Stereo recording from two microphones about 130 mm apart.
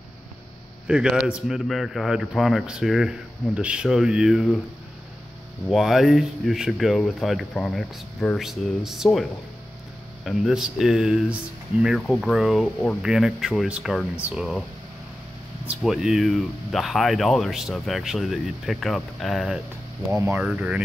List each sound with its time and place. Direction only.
0.8 s speech: 5° right (ahead or behind)
5.7 s speech: centre (ahead or behind)
15.6 s speech: 5° right (ahead or behind)
20.1 s speech: 20° right (ahead or behind)
20.4 s speech: 10° right (ahead or behind)